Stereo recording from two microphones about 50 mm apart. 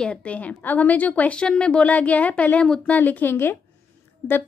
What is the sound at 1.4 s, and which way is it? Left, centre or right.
Speech, centre.